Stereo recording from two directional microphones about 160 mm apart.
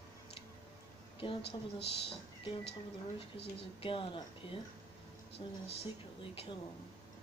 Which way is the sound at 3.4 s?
35° left (ahead or behind).